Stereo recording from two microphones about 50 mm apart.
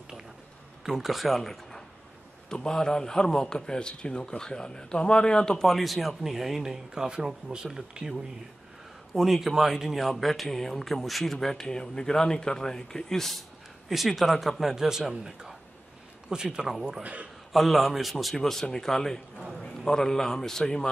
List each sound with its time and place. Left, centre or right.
0.8 s a man's voice: centre
5.7 s a man's voice: centre
9.1 s a man's voice: centre
13.8 s a man's voice: centre
17.0 s a man's voice: right
17.5 s a man's voice: centre